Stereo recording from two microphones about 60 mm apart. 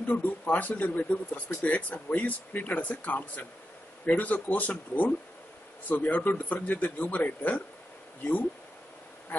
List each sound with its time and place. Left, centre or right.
0.0 s speech: left
9.3 s bee: left